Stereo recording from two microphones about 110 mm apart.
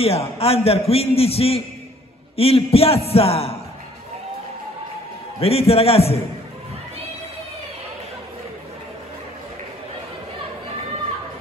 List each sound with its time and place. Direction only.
0.0 s a man's voice: 65° left (ahead or behind)
5.4 s a man's voice: 65° left (ahead or behind)